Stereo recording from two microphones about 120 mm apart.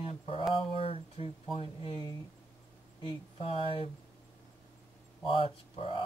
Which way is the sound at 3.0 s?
50° left (ahead or behind).